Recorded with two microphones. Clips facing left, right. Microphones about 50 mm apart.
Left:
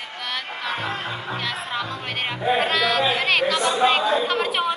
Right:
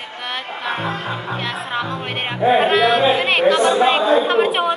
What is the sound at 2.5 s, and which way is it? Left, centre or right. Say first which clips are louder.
Music: right 6 dB; right.